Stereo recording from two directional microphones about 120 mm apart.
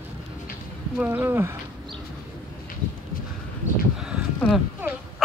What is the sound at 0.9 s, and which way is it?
Speech, 15° right (ahead or behind).